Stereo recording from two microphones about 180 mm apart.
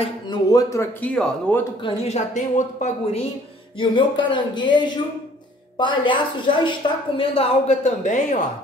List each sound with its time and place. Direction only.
0.0 s speech: 20° left (ahead or behind)
1.0 s speech: 5° left (ahead or behind)
1.8 s a woman's voice: 35° left (ahead or behind)
3.8 s a woman's voice: 25° left (ahead or behind); by 8.4 s 45° left (ahead or behind)